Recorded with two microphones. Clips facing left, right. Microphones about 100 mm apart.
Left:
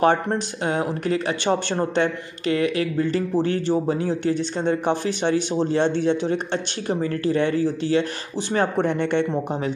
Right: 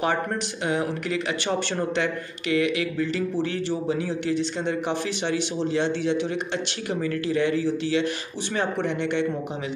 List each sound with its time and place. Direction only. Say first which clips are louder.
0.1 s speech: left 4 dB; 35° left (ahead or behind)
8.9 s speech: left 4 dB; 50° left (ahead or behind)